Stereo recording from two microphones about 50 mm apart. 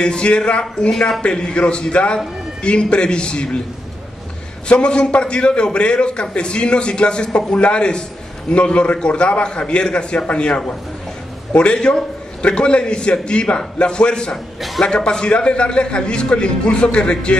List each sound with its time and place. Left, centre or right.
0.0 s a man's voice: centre
4.6 s a man's voice: centre
14.3 s a man's voice: centre
14.8 s a man's voice: centre